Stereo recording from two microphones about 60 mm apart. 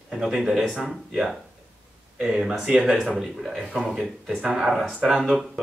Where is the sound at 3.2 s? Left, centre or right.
Centre.